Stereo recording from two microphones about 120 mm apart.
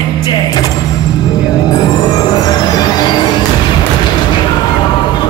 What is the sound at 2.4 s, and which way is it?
Music, 35° left (ahead or behind).